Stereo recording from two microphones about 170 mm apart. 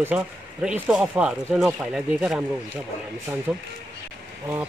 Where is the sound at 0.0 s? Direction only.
5° right (ahead or behind).